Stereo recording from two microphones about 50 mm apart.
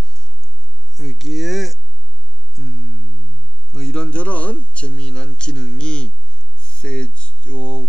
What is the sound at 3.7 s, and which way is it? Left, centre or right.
Speech, centre.